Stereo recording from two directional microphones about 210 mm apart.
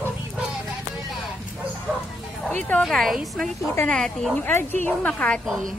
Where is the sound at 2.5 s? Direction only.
10° left (ahead or behind).